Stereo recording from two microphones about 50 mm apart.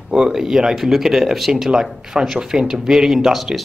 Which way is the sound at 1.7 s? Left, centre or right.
Centre.